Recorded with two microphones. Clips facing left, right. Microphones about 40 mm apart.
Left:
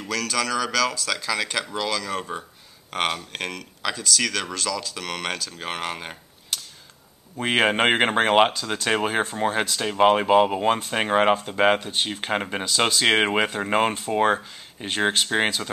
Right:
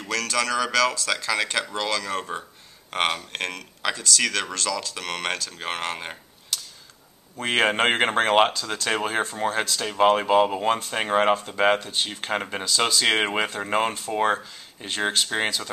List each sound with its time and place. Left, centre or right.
0.1 s speech: centre
6.5 s tick-tock: left
7.3 s speech: centre